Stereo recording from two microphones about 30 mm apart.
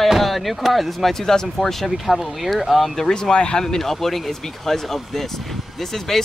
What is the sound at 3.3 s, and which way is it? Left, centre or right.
Speech, left.